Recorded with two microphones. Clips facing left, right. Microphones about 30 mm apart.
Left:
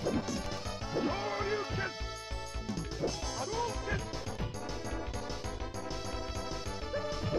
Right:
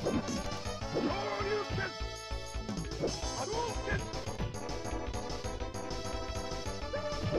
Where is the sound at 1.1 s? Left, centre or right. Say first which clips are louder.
Even; right.